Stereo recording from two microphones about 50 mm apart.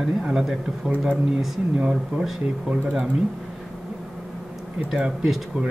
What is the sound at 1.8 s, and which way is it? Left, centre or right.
Speech, centre.